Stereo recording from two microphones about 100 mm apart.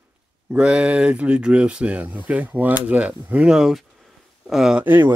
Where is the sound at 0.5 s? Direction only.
10° right (ahead or behind).